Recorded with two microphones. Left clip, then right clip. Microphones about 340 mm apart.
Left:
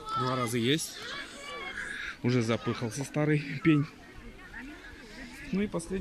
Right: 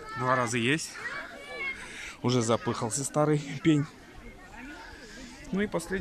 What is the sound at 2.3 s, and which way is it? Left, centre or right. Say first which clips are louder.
Speech: right 4 dB; centre.